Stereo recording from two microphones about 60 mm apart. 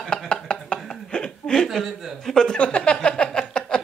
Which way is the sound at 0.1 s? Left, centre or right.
Centre.